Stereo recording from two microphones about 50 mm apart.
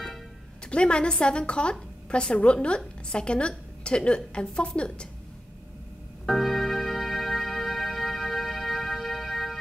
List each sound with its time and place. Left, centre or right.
0.7 s a woman's voice: left
6.2 s music: centre